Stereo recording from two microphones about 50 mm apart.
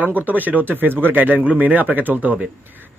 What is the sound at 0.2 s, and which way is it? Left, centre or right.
Speech, right.